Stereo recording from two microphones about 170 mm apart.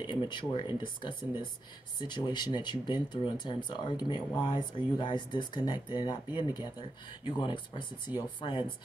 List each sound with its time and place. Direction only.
0.0 s speech: 25° left (ahead or behind)